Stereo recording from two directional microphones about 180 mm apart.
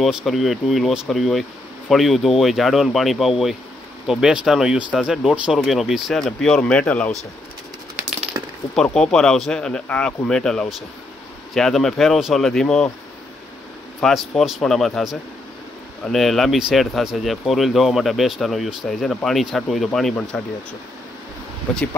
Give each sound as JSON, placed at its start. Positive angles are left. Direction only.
{"t": 0.0, "sound": "speech", "side_deg": 0}
{"t": 8.3, "sound": "coin", "side_deg": -15}
{"t": 8.7, "sound": "speech", "side_deg": 5}
{"t": 14.0, "sound": "speech", "side_deg": 0}